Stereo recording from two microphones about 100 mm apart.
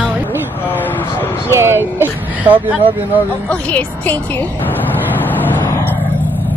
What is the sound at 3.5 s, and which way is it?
Speech, 15° left (ahead or behind).